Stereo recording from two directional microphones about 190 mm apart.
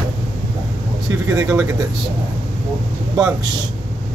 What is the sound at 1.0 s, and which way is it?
Speech, 20° right (ahead or behind).